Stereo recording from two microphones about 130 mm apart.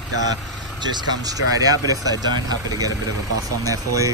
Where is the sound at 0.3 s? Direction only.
35° right (ahead or behind).